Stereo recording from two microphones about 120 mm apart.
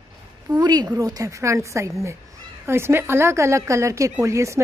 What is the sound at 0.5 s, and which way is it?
A woman's voice, 35° right (ahead or behind).